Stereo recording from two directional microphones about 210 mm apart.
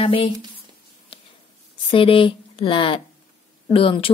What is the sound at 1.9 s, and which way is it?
Speech, 25° left (ahead or behind).